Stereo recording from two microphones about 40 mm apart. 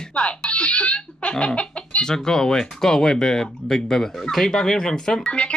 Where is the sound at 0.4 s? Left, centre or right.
Left.